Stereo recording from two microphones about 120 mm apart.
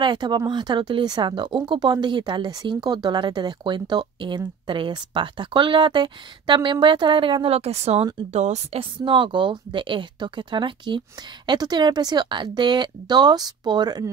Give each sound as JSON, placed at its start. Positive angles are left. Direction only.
{"t": 0.0, "sound": "a woman's voice", "side_deg": -40}
{"t": 8.3, "sound": "speech", "side_deg": -70}
{"t": 9.0, "sound": "a woman's voice", "side_deg": -40}